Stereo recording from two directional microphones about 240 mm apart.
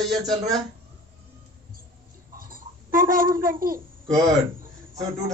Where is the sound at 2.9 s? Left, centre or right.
Right.